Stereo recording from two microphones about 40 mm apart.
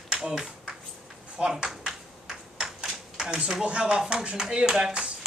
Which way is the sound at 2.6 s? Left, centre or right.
Centre.